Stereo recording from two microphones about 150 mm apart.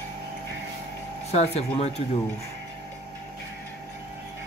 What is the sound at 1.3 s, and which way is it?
Speech, 45° left (ahead or behind).